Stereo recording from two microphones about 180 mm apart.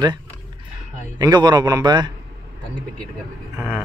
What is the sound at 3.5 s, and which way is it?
Speech, 10° right (ahead or behind).